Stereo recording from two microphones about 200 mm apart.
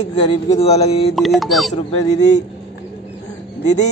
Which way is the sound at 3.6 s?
35° left (ahead or behind).